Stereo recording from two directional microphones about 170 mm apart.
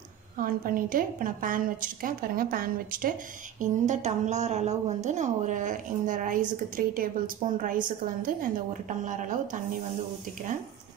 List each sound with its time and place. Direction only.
0.4 s a woman's voice: 55° right (ahead or behind)